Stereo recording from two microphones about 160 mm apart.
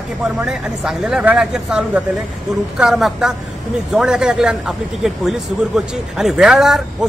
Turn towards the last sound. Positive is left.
turn(degrees=0)  # may be behind; listen again after turning